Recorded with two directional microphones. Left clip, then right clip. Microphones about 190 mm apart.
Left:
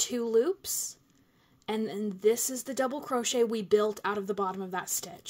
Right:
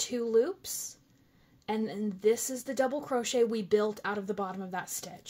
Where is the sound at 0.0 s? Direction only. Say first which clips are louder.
Left 1 dB; 25° left (ahead or behind).